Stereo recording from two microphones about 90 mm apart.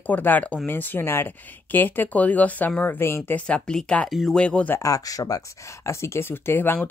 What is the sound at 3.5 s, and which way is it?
Speech, 10° left (ahead or behind).